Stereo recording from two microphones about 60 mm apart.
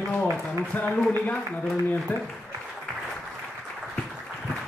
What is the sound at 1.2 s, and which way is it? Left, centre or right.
A man's voice, left.